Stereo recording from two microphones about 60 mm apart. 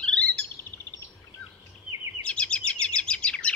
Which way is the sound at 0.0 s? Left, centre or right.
Centre.